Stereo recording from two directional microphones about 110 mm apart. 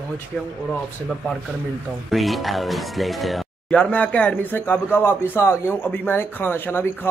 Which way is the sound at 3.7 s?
10° left (ahead or behind).